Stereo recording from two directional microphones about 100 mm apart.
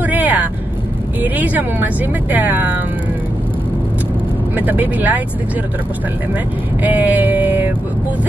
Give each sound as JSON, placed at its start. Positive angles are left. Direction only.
{"t": 0.0, "sound": "vehicle", "side_deg": -15}
{"t": 1.2, "sound": "speech", "side_deg": -15}
{"t": 4.6, "sound": "speech", "side_deg": -20}
{"t": 6.8, "sound": "speech", "side_deg": -15}